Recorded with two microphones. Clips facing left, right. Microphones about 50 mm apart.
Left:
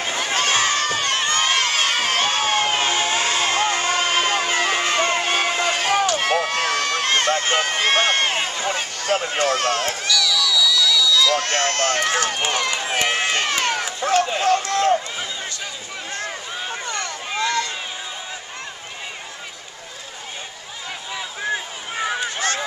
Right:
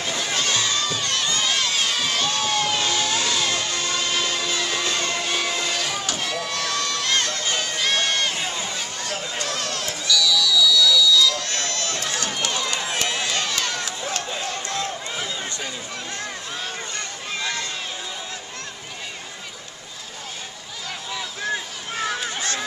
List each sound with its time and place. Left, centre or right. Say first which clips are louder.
0.0 s crowd: left 3 dB; left
6.1 s run: left 7 dB; left
10.2 s a sound: right 2 dB; left
10.7 s buzzer: right 1 dB; left
11.1 s run: left 3 dB; left
12.7 s run: left 4 dB; left
13.1 s crowd: left 4 dB; left
14.2 s run: left 9 dB; left
21.1 s a sound: left 2 dB; centre